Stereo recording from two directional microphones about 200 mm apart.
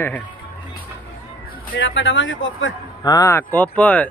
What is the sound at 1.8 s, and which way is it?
Speech, 70° left (ahead or behind).